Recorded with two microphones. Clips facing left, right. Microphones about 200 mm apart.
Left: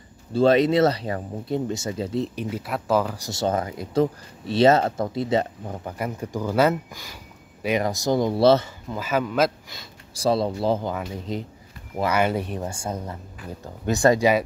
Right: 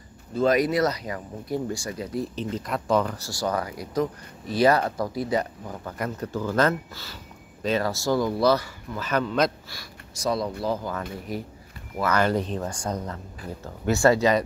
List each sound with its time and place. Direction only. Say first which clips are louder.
0.3 s speech: left 4 dB; 30° left (ahead or behind)
2.3 s speech: even; 10° left (ahead or behind)
3.2 s speech: left 3 dB; 25° left (ahead or behind)
5.9 s speech: even; 10° left (ahead or behind)
8.9 s speech: left 1 dB; 10° left (ahead or behind)
10.1 s speech: left 4 dB; 30° left (ahead or behind)
12.0 s speech: left 1 dB; 10° left (ahead or behind)
12.6 s speech: even; 25° left (ahead or behind)
12.9 s speech: right 1 dB; 10° left (ahead or behind)